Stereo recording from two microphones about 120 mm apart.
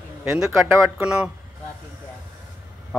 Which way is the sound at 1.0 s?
10° right (ahead or behind).